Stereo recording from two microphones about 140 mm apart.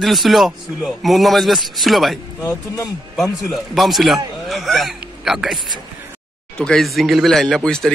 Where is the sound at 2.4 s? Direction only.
25° left (ahead or behind).